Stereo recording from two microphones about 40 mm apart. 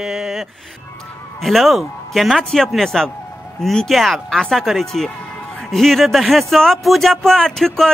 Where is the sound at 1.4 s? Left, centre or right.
Centre.